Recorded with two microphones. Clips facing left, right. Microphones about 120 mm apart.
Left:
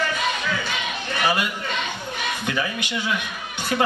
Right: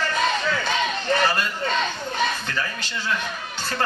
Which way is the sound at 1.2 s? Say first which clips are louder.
Even; 10° left (ahead or behind).